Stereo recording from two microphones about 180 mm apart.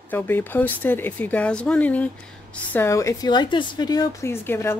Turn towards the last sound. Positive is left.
turn(degrees=15)  # may be behind; listen again after turning